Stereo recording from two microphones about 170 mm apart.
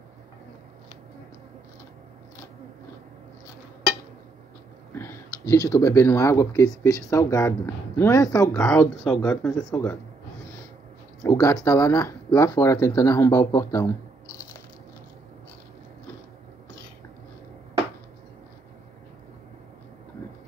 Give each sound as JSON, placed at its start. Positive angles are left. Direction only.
{"t": 4.9, "sound": "a sound", "side_deg": 15}
{"t": 5.7, "sound": "speech", "side_deg": 20}
{"t": 8.6, "sound": "speech", "side_deg": 5}
{"t": 11.2, "sound": "speech", "side_deg": 20}